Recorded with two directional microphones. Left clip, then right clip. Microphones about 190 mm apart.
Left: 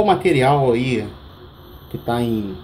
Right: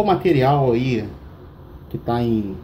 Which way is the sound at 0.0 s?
10° left (ahead or behind).